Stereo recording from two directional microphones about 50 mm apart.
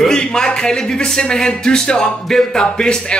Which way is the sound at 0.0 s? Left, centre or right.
Centre.